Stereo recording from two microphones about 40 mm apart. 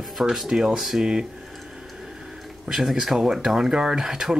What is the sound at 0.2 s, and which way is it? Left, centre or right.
Speech, centre.